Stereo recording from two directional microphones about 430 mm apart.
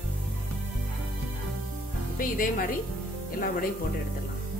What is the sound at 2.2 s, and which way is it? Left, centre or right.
Speech, centre.